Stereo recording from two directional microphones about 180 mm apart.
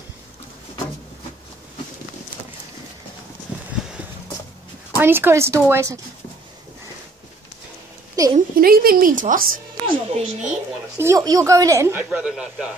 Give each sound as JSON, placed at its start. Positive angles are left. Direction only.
{"t": 4.9, "sound": "speech", "side_deg": -10}
{"t": 8.2, "sound": "a woman's voice", "side_deg": -20}
{"t": 8.5, "sound": "speech", "side_deg": -55}
{"t": 9.8, "sound": "speech", "side_deg": -30}
{"t": 11.0, "sound": "speech", "side_deg": -20}